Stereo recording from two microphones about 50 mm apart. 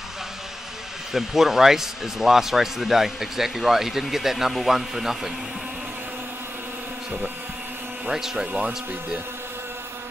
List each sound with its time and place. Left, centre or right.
1.1 s speech: centre
8.1 s speech: centre
8.5 s speech: right